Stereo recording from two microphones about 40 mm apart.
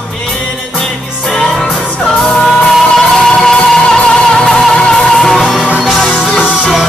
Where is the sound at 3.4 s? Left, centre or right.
Centre.